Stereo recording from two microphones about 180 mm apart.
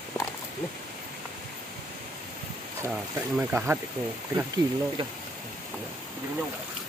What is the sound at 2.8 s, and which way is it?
Speech, 10° right (ahead or behind).